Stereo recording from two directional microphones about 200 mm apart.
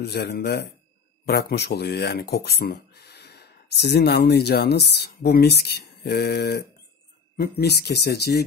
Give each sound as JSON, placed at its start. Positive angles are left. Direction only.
{"t": 0.0, "sound": "speech", "side_deg": 50}